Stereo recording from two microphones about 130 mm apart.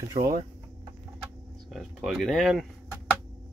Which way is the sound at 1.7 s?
Centre (ahead or behind).